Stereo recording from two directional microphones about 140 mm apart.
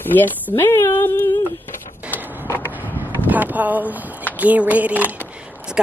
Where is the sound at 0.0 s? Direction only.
15° left (ahead or behind).